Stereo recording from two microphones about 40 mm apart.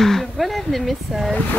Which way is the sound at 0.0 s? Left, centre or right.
Centre.